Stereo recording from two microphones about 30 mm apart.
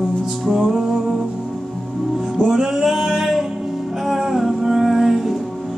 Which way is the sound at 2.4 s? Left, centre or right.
Centre.